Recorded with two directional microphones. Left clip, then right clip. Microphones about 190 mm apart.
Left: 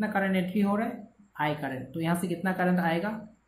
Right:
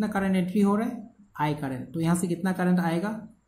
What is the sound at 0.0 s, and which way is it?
A woman's voice, 40° right (ahead or behind).